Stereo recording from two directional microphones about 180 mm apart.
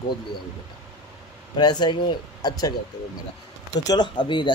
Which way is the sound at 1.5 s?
25° left (ahead or behind).